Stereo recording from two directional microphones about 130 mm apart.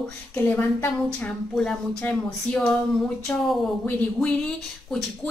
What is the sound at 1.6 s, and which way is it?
Speech, 5° left (ahead or behind).